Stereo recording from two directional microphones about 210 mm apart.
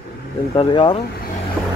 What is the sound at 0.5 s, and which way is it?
Speech, 25° left (ahead or behind).